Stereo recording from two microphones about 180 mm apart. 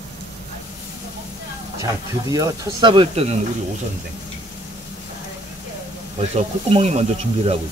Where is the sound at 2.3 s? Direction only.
20° right (ahead or behind).